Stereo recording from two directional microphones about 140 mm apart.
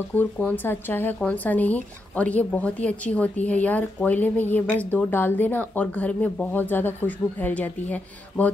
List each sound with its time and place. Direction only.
0.1 s speech: 10° left (ahead or behind)